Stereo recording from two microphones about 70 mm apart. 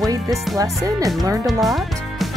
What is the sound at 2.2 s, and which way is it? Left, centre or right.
Music, centre.